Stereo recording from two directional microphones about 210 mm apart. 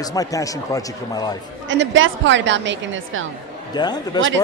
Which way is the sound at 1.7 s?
60° right (ahead or behind).